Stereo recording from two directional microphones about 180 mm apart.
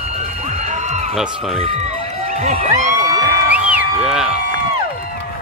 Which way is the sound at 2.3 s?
40° right (ahead or behind).